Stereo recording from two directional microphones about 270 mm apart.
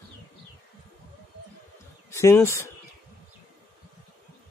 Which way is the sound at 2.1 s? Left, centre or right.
Centre.